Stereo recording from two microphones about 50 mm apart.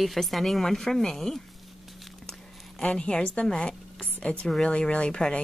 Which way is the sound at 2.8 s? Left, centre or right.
Centre.